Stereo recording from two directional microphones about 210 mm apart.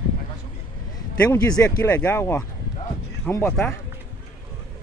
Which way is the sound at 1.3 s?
15° left (ahead or behind).